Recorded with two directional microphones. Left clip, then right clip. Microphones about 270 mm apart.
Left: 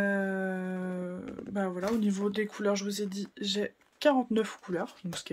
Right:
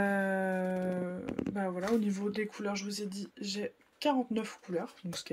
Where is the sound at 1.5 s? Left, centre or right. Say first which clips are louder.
Left 2 dB; centre.